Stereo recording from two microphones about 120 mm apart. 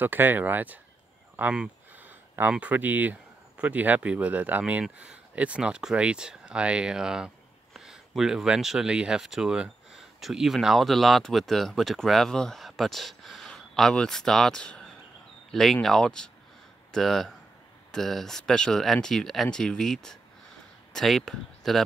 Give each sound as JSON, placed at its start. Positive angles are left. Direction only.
{"t": 0.0, "sound": "speech", "side_deg": -15}